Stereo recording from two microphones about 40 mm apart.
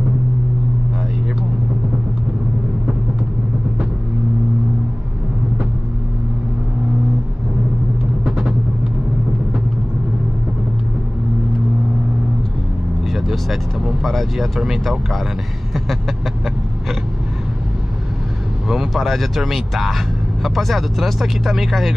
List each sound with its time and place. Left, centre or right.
8.3 s vehicle: right
13.1 s vehicle: centre
18.7 s vehicle: centre
19.0 s speech: centre